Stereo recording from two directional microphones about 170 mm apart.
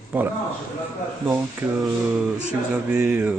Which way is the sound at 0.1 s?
10° right (ahead or behind).